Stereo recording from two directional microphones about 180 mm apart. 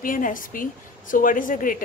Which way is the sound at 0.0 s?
50° left (ahead or behind).